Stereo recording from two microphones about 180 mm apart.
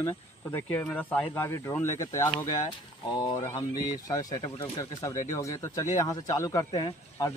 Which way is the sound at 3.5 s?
20° left (ahead or behind).